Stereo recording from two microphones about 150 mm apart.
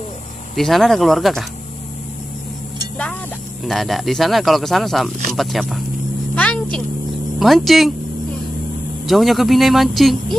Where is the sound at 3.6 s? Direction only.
Centre (ahead or behind).